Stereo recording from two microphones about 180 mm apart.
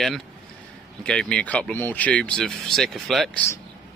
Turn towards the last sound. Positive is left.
turn(degrees=0)  # may be behind; listen again after turning